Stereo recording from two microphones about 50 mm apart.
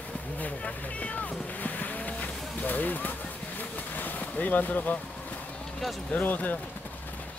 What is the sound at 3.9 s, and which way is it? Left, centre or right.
Vehicle, left.